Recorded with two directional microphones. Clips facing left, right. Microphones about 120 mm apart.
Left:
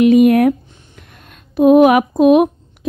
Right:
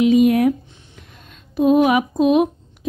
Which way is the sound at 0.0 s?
60° left (ahead or behind).